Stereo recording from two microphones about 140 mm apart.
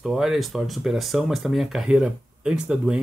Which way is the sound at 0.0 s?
Centre (ahead or behind).